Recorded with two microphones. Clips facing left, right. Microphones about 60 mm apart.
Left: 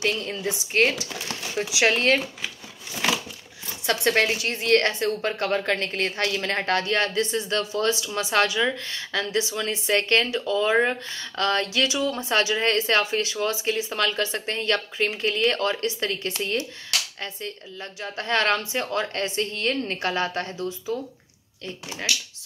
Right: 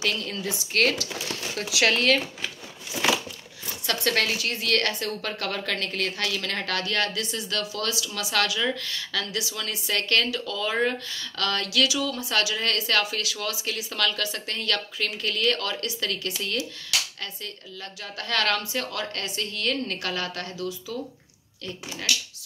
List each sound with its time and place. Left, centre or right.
0.0 s a woman's voice: left
2.9 s crumpling: centre
3.8 s a woman's voice: left
18.0 s a woman's voice: left